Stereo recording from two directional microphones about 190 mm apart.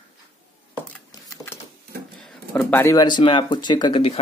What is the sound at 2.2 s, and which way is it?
Speech, centre (ahead or behind).